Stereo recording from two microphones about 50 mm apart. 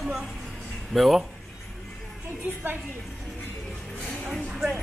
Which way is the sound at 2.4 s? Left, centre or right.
Right.